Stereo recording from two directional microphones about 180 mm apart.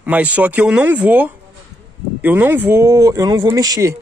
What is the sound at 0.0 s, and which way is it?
A man's voice, 10° right (ahead or behind).